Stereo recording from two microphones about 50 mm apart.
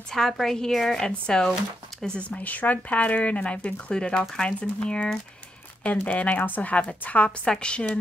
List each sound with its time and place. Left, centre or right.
0.1 s a woman's voice: centre
2.1 s speech: left